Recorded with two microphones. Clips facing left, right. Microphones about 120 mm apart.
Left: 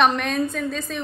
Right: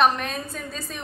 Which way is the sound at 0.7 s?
5° right (ahead or behind).